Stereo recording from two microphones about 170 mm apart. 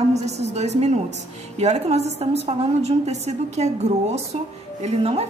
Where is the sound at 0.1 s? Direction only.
40° right (ahead or behind).